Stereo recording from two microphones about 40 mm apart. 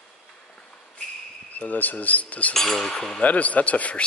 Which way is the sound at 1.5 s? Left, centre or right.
Left.